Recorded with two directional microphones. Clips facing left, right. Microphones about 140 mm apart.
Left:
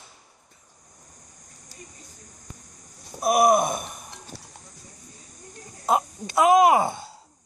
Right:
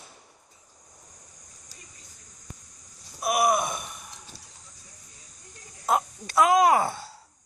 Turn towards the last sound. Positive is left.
turn(degrees=20)  # may be behind; listen again after turning